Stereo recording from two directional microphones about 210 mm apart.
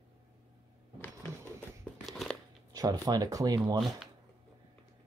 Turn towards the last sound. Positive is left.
turn(degrees=-20)  # may be behind; listen again after turning